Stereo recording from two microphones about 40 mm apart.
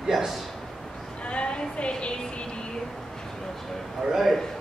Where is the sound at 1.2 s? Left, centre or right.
Left.